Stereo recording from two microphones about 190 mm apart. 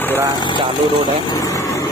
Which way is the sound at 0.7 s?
25° right (ahead or behind).